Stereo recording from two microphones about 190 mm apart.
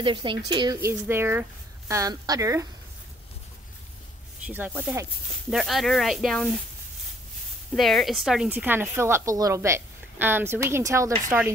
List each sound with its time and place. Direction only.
0.0 s speech: 25° right (ahead or behind)
0.7 s a woman's voice: 10° right (ahead or behind)
4.5 s a woman's voice: 10° right (ahead or behind)
7.7 s a woman's voice: centre (ahead or behind)